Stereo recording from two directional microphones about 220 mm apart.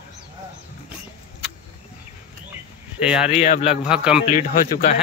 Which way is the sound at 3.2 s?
30° left (ahead or behind).